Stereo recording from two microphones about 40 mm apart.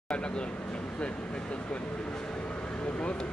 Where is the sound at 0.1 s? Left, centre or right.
Left.